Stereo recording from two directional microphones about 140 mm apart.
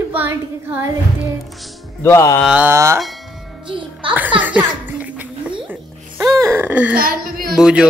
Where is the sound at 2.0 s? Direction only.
20° left (ahead or behind).